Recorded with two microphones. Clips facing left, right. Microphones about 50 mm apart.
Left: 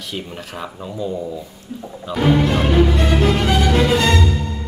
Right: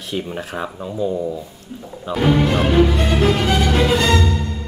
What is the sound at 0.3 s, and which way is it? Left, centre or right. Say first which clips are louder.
Speech: right 5 dB; right.